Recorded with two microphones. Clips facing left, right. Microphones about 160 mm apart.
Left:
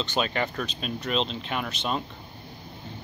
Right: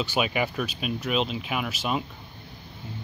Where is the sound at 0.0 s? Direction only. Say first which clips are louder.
Right 1 dB; 10° right (ahead or behind).